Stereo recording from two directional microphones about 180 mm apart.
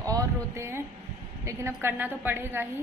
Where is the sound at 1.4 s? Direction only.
15° right (ahead or behind).